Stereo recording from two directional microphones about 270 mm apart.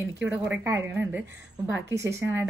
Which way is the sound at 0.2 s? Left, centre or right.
Centre.